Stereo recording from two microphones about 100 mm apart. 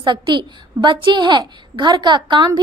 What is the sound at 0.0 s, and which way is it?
A woman's voice, 50° right (ahead or behind).